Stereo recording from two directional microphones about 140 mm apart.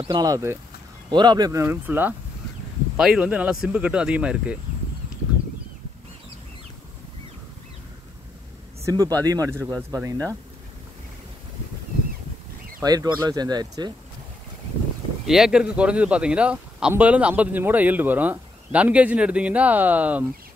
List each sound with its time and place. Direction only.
0.1 s speech: 25° right (ahead or behind); by 4.6 s 10° right (ahead or behind)
8.8 s speech: 25° right (ahead or behind)
12.8 s speech: 25° right (ahead or behind)
15.2 s speech: 5° right (ahead or behind)